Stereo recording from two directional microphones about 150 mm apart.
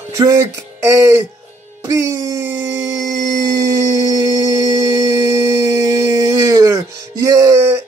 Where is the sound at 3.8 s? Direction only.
20° right (ahead or behind).